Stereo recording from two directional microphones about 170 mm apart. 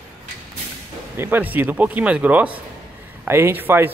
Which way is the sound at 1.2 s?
10° right (ahead or behind).